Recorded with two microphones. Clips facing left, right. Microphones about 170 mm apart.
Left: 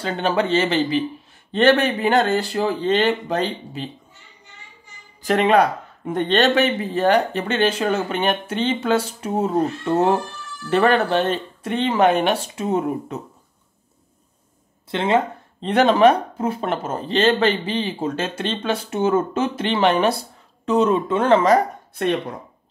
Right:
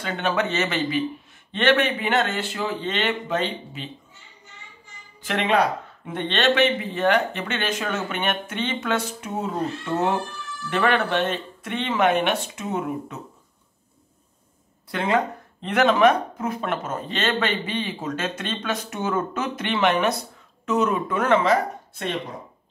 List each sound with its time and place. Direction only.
0.0 s speech: 30° left (ahead or behind)
5.2 s speech: 40° left (ahead or behind)
14.9 s speech: 25° left (ahead or behind)